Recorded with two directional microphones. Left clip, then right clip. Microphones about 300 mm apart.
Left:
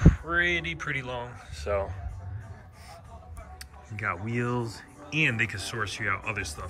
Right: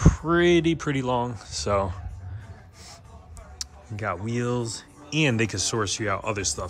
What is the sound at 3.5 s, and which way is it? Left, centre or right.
Speech, centre.